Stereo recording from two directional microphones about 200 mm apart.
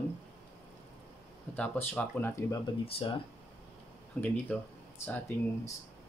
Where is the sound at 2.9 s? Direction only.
30° left (ahead or behind).